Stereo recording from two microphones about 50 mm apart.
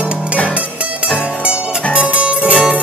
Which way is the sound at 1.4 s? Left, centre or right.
Right.